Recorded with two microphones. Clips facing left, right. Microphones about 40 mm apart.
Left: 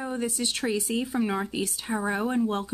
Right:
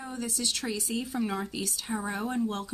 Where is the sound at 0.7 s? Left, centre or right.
Left.